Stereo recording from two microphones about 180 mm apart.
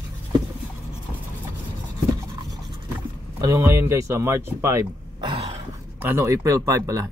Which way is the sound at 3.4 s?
15° right (ahead or behind).